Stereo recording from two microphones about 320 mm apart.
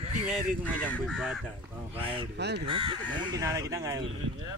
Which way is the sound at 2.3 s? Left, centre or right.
Right.